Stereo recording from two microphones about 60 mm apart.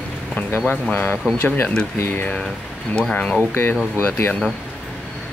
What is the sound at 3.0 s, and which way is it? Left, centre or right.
Speech, centre.